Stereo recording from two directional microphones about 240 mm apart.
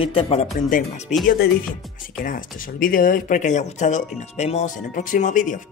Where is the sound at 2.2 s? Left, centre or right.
Left.